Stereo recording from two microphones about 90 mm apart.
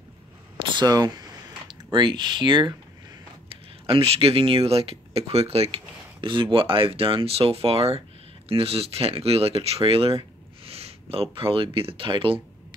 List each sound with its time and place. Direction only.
0.7 s speech: 50° right (ahead or behind)
3.4 s speech: 90° right
6.2 s speech: 65° right (ahead or behind)